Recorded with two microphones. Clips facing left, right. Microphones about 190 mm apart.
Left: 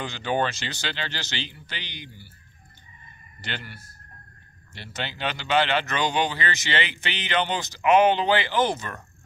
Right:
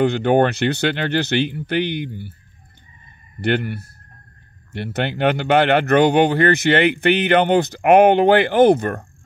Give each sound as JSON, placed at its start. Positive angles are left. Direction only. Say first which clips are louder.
{"t": 0.0, "sound": "speech", "louder": "right 11 dB", "side_deg": -60}
{"t": 3.3, "sound": "speech", "louder": "right 17 dB", "side_deg": -60}